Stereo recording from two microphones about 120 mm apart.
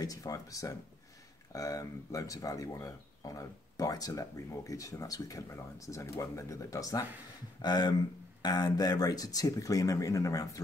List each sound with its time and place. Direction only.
0.0 s speech: 30° left (ahead or behind)